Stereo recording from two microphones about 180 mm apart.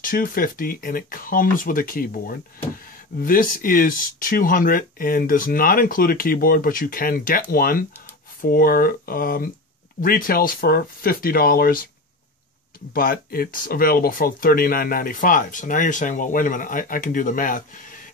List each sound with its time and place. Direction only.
0.0 s speech: 50° left (ahead or behind)
12.9 s speech: 50° left (ahead or behind)